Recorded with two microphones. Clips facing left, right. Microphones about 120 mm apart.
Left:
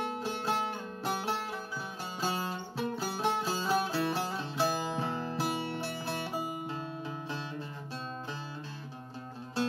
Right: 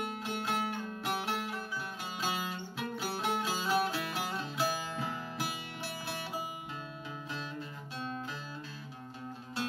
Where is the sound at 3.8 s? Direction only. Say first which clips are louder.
Left 4 dB; 30° left (ahead or behind).